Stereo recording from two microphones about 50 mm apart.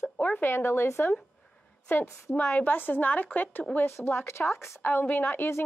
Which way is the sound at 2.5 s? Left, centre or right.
Left.